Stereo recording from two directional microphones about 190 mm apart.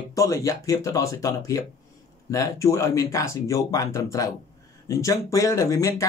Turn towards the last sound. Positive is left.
turn(degrees=15)  # may be behind; listen again after turning